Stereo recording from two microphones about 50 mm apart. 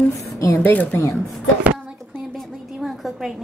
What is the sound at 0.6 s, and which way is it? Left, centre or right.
Speech, left.